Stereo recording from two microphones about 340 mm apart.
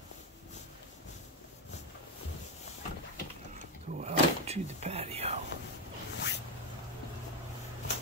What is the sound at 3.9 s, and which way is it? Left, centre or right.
Speech, centre.